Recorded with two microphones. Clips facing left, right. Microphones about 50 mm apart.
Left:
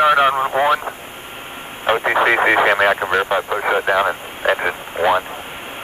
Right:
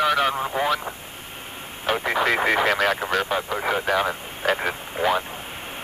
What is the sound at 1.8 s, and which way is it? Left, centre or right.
Vehicle, left.